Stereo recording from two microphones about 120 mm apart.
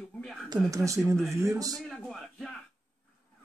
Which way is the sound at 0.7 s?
25° right (ahead or behind).